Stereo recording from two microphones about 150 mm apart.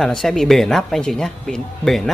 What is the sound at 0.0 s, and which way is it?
Speech, 5° left (ahead or behind).